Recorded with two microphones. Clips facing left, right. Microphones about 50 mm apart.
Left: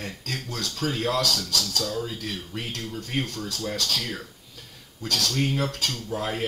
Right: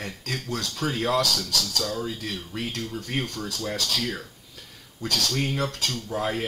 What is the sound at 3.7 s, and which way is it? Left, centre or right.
Speech, centre.